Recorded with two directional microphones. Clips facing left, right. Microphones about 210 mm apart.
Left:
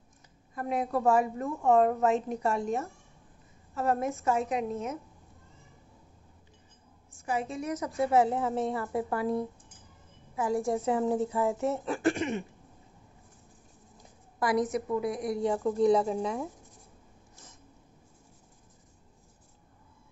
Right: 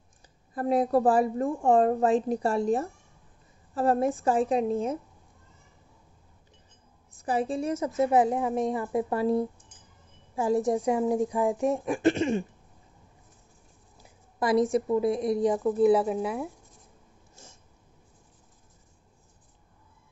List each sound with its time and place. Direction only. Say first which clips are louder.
0.6 s a woman's voice: right 7 dB; 35° right (ahead or behind)
7.2 s a woman's voice: right 5 dB; 35° right (ahead or behind)
14.4 s a woman's voice: right 4 dB; 25° right (ahead or behind)
15.6 s a woman's voice: right 1 dB; 5° right (ahead or behind)